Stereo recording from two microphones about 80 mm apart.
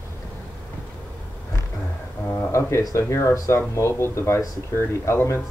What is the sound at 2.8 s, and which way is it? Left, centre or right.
Speech, left.